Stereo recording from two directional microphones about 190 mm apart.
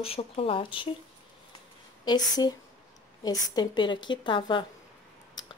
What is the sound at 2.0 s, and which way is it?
A woman's voice, 20° left (ahead or behind).